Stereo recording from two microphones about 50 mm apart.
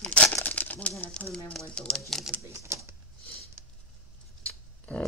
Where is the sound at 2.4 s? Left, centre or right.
Right.